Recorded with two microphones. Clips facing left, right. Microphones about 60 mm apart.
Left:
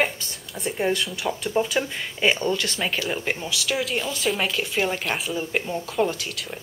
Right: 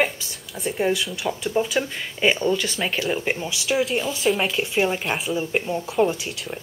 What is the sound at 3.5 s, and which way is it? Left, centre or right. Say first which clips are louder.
Speech: right 1 dB; right.